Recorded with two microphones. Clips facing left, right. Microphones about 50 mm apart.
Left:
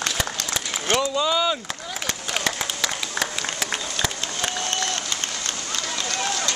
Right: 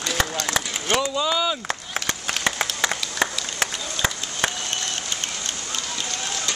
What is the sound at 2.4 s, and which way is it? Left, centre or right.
Applause, right.